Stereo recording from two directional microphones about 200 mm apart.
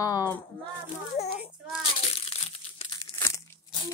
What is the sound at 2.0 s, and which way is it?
Crumpling, 30° left (ahead or behind).